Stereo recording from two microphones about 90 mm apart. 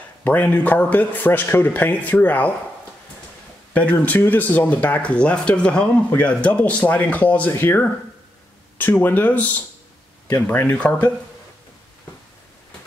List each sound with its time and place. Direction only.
0.2 s speech: 20° left (ahead or behind)
3.7 s speech: 15° left (ahead or behind)
10.4 s speech: 15° left (ahead or behind)